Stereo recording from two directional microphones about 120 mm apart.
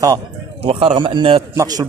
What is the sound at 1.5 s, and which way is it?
Speech, 30° right (ahead or behind).